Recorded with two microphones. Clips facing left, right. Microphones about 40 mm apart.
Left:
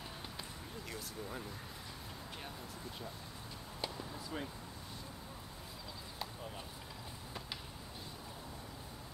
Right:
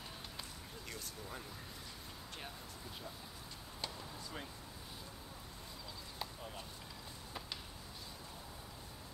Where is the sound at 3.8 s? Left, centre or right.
Centre.